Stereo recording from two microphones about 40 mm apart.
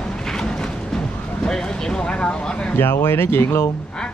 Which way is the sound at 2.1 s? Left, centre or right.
Left.